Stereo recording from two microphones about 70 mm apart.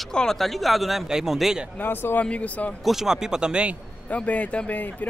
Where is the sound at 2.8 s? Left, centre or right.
Centre.